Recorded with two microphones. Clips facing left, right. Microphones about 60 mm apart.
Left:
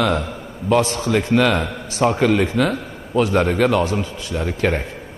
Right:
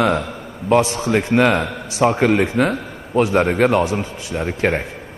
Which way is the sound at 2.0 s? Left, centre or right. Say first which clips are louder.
Right 1 dB; right.